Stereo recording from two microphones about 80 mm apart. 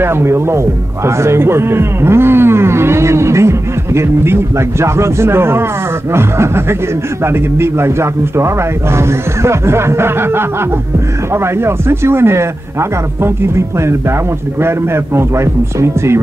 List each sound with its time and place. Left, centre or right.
0.0 s speech: right
15.1 s speech: right